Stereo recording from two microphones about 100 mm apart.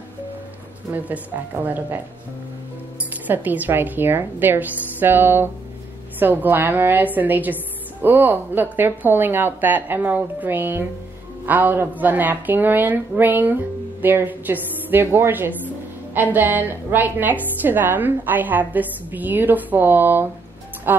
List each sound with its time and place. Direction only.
0.9 s speech: 15° right (ahead or behind)
3.1 s a woman's voice: 15° right (ahead or behind)